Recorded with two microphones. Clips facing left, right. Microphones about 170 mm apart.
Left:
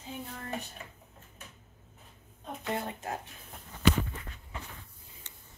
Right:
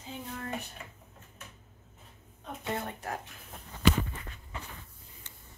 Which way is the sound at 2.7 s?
20° left (ahead or behind).